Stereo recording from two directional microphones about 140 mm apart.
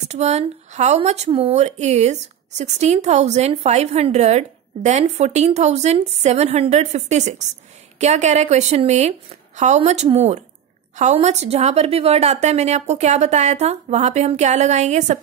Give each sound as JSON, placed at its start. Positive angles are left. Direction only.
{"t": 0.1, "sound": "speech", "side_deg": -50}